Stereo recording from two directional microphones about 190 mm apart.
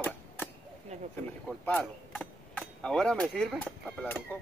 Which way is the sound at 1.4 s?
5° left (ahead or behind).